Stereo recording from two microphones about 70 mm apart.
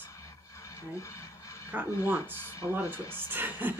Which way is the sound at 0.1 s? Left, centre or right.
Left.